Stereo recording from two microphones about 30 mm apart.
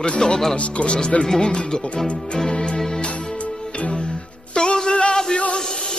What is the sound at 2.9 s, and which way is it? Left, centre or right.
Music, left.